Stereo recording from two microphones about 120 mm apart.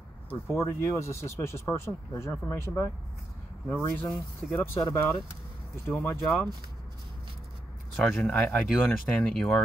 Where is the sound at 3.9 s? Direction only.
5° left (ahead or behind).